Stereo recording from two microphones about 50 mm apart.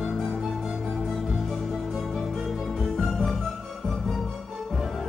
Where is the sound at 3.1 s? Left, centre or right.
Centre.